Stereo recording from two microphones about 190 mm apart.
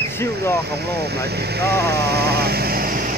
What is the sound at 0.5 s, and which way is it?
Speech, 60° right (ahead or behind).